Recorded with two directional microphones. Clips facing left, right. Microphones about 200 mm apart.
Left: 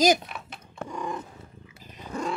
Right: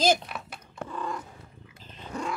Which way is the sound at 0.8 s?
15° left (ahead or behind).